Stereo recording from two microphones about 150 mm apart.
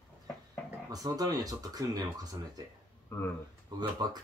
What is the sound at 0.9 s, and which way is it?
Speech, 25° right (ahead or behind).